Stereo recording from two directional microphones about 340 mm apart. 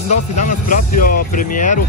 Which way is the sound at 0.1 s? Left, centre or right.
Left.